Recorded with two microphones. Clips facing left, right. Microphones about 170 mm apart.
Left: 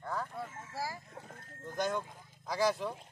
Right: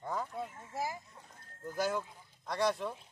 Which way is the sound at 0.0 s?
20° right (ahead or behind).